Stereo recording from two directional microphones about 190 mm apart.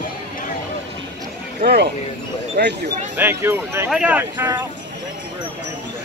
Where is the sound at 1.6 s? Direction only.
60° right (ahead or behind).